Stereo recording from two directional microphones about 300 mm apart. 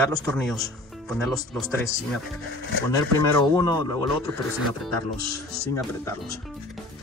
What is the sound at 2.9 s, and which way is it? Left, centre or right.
Speech, centre.